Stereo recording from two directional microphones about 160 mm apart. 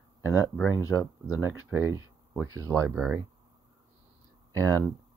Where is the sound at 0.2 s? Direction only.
20° left (ahead or behind).